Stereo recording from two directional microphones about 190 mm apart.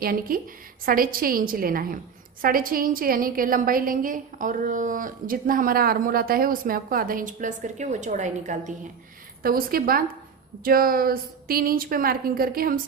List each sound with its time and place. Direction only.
0.0 s a woman's voice: 50° right (ahead or behind)
9.4 s a woman's voice: 50° right (ahead or behind)